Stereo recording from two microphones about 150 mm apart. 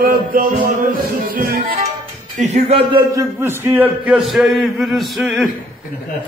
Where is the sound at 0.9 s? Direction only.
80° right.